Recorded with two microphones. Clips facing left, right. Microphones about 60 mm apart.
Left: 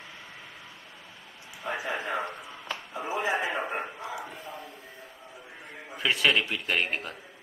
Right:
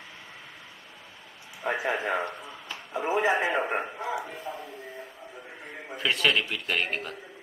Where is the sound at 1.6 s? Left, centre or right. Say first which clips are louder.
Right 4 dB; right.